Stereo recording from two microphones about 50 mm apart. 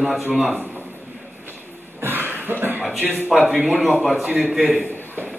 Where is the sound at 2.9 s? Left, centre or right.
Right.